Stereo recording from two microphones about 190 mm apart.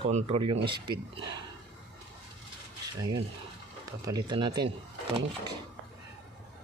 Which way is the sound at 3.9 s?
20° right (ahead or behind).